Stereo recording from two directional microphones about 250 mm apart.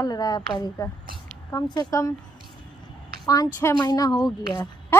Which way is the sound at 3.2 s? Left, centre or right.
Centre.